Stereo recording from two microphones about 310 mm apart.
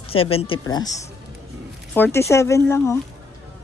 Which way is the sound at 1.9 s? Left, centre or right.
Centre.